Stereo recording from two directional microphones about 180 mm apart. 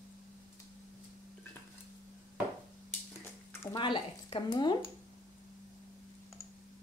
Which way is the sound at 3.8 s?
30° left (ahead or behind).